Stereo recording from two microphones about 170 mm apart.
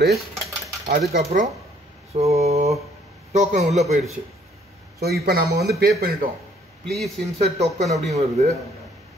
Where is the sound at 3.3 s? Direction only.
40° right (ahead or behind).